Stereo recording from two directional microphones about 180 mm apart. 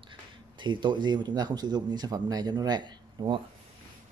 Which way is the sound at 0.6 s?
25° right (ahead or behind).